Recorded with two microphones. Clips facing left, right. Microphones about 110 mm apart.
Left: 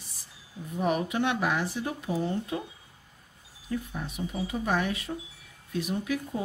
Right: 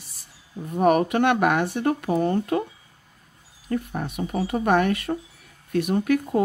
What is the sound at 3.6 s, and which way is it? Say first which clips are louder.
Speech: right 6 dB; 60° right (ahead or behind).